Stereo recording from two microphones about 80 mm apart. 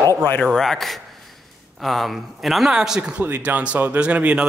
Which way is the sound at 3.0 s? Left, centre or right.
Centre.